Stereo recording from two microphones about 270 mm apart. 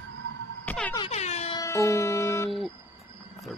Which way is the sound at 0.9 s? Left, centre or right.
Left.